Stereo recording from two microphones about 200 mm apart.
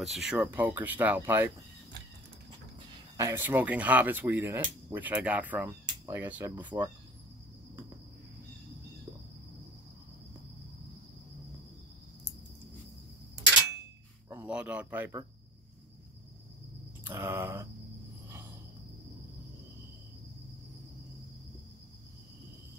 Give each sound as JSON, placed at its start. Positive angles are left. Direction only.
{"t": 0.0, "sound": "speech", "side_deg": 0}
{"t": 3.2, "sound": "speech", "side_deg": -15}
{"t": 6.7, "sound": "speech", "side_deg": -25}
{"t": 14.3, "sound": "speech", "side_deg": -5}
{"t": 17.0, "sound": "speech", "side_deg": -10}